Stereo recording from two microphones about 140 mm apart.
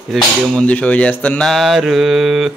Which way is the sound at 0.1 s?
5° left (ahead or behind).